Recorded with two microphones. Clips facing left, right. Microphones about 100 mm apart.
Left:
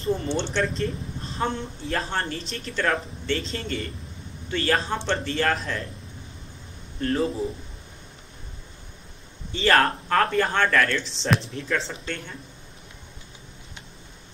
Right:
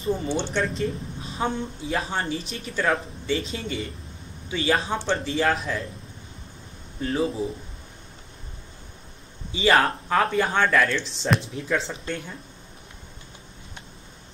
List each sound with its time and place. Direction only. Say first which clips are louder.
0.0 s speech: even; centre (ahead or behind)
7.0 s speech: left 1 dB; 5° right (ahead or behind)
9.5 s speech: even; 5° right (ahead or behind)